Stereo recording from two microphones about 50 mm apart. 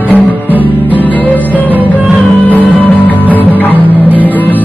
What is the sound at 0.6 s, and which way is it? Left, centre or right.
Music, left.